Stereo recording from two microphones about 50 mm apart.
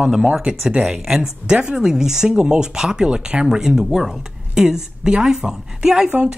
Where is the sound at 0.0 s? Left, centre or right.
Centre.